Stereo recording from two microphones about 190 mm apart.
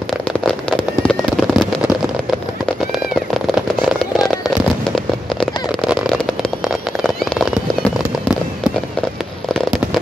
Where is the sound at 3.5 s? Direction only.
Centre (ahead or behind).